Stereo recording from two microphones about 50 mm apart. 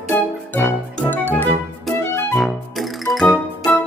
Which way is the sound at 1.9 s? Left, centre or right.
Centre.